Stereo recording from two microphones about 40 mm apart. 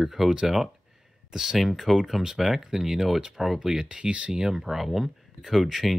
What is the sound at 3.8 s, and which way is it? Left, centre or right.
Speech, right.